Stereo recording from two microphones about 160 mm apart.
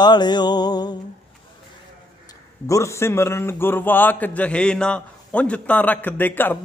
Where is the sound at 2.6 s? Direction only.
20° left (ahead or behind).